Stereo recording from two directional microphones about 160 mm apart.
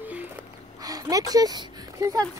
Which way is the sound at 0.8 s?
25° right (ahead or behind).